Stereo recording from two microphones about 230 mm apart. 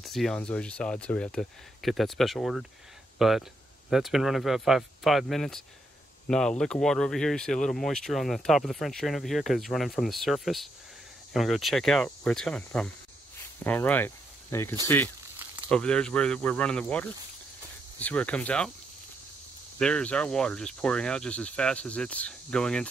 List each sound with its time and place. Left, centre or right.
0.0 s speech: centre
19.8 s speech: centre